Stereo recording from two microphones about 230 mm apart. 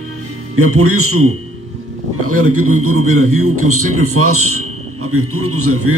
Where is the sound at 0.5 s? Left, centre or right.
Right.